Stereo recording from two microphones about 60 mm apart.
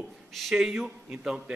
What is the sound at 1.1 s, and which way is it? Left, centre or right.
Speech, centre.